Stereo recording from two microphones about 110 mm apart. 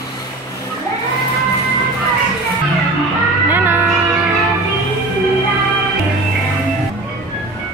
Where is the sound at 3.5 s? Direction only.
15° right (ahead or behind).